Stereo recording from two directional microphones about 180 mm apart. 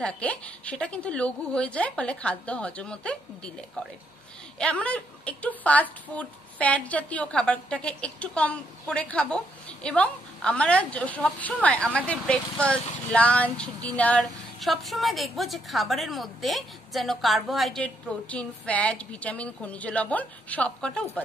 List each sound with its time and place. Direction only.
0.0 s speech: 5° left (ahead or behind)
4.6 s speech: 5° left (ahead or behind)